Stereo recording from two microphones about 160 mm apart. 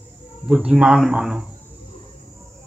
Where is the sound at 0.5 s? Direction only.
5° right (ahead or behind).